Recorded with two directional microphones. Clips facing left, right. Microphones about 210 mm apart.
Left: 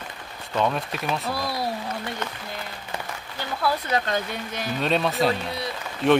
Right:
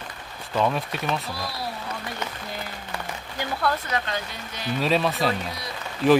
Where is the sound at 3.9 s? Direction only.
45° left (ahead or behind).